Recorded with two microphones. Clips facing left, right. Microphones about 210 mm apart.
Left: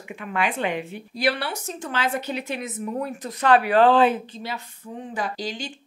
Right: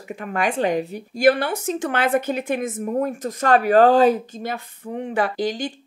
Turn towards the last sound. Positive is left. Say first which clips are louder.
# right 7 dB
turn(degrees=-60)  # may be behind; listen again after turning